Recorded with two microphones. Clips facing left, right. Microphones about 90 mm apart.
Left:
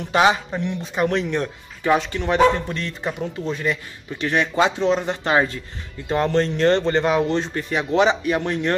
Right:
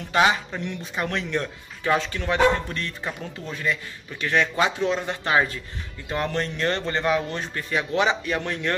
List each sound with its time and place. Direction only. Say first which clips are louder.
0.1 s speech: left 3 dB; 20° left (ahead or behind)